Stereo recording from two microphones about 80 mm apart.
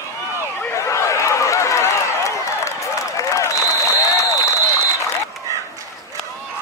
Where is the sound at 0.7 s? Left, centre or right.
Left.